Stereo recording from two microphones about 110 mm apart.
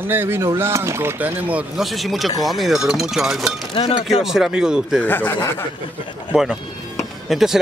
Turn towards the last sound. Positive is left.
turn(degrees=-5)  # may be behind; listen again after turning